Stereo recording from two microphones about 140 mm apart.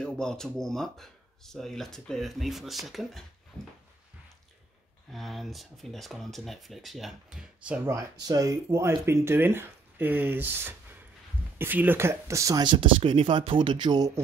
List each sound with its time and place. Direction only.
0.0 s speech: 5° left (ahead or behind)
5.1 s speech: centre (ahead or behind)
7.9 s speech: 25° right (ahead or behind)